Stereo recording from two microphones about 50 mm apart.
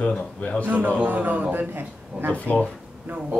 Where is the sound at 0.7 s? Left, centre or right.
Right.